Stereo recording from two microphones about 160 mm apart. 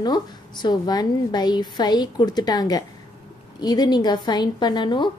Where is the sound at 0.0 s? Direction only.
25° left (ahead or behind).